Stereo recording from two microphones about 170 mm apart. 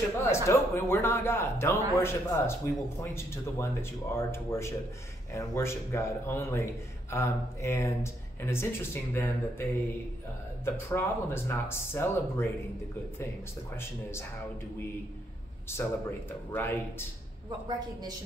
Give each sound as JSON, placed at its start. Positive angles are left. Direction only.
{"t": 0.2, "sound": "a man's voice", "side_deg": 15}
{"t": 15.7, "sound": "a man's voice", "side_deg": 15}
{"t": 17.6, "sound": "a man's voice", "side_deg": -25}